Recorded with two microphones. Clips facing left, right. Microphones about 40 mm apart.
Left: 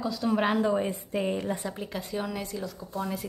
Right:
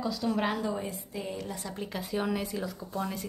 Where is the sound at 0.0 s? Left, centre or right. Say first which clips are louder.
Left 3 dB; centre.